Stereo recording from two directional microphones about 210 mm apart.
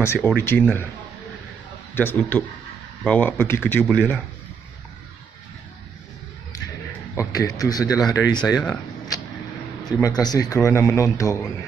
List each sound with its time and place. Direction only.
0.0 s a man's voice: 10° left (ahead or behind)
2.0 s a man's voice: 10° left (ahead or behind)
7.2 s a man's voice: 15° left (ahead or behind)
8.5 s a man's voice: 5° left (ahead or behind)
10.0 s a man's voice: 15° left (ahead or behind)